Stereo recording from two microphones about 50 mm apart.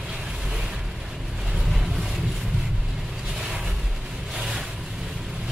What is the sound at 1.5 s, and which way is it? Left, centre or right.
Vehicle, centre.